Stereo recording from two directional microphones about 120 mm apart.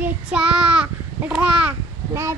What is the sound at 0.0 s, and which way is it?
Child singing, 10° right (ahead or behind).